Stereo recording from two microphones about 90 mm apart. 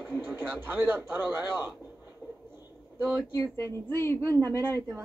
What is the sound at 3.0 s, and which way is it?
Speech, 25° right (ahead or behind).